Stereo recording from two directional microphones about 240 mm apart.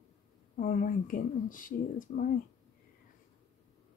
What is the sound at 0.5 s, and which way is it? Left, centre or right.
Speech, left.